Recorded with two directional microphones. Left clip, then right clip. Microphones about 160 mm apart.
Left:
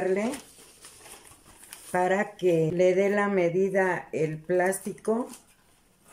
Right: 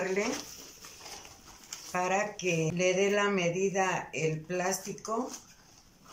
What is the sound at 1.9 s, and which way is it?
Speech, 50° left (ahead or behind).